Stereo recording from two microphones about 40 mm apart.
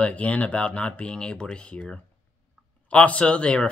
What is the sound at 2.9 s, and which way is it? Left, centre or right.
Speech, left.